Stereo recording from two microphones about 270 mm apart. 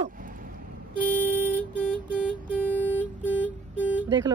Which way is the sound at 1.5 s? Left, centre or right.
Centre.